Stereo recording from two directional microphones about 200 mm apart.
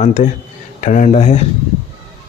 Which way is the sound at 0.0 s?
40° left (ahead or behind).